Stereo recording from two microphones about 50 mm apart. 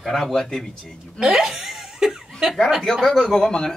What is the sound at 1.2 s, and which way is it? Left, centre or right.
Speech, centre.